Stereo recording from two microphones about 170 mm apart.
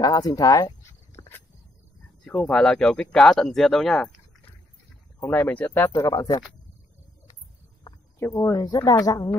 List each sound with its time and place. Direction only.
0.0 s a sound: 20° left (ahead or behind)
2.2 s speech: 5° left (ahead or behind)
5.9 s speech: 20° left (ahead or behind)
8.2 s speech: 20° left (ahead or behind)